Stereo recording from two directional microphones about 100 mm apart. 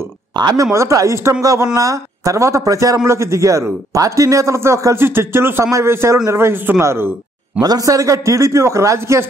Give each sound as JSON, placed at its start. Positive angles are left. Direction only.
{"t": 0.4, "sound": "speech", "side_deg": -45}
{"t": 0.7, "sound": "a man's voice", "side_deg": -30}
{"t": 7.6, "sound": "a man's voice", "side_deg": -35}